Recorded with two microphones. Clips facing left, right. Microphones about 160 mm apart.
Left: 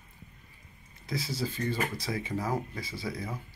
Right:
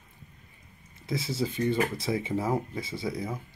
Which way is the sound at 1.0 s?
25° right (ahead or behind).